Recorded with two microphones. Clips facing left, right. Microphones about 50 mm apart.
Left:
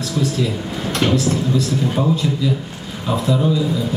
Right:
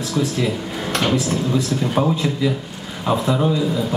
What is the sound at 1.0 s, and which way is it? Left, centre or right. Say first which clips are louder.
A man's voice: left 3 dB; centre.